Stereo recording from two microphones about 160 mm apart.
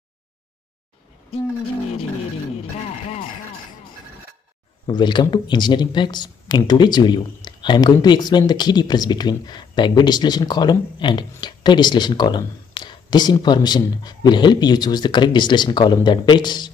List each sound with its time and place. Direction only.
4.8 s speech: 30° left (ahead or behind)